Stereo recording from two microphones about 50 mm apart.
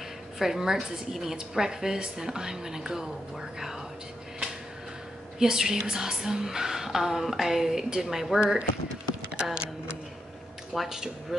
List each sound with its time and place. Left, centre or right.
0.4 s a woman's voice: centre
5.4 s a woman's voice: centre
8.4 s a woman's voice: centre
10.7 s speech: centre